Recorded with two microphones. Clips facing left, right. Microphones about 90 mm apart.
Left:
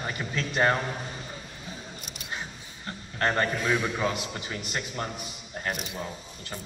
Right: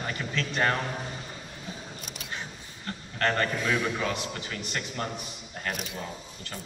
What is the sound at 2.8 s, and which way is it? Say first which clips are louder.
A man's voice: even; 20° left (ahead or behind).